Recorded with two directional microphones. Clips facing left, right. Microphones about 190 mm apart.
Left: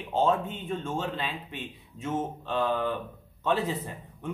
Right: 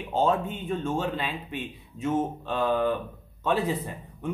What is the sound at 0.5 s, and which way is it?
Speech, 10° right (ahead or behind).